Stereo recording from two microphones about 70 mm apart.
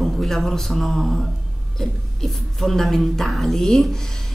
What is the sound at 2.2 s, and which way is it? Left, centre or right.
A woman's voice, centre.